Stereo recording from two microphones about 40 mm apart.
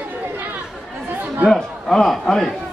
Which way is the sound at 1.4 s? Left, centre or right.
Centre.